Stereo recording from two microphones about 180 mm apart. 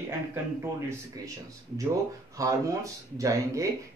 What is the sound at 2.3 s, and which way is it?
Speech, 20° right (ahead or behind).